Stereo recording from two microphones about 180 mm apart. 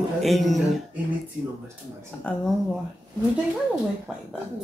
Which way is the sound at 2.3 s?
5° left (ahead or behind).